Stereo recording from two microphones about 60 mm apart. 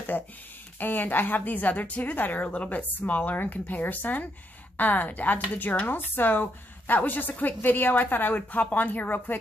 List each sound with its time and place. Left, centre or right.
0.7 s speech: left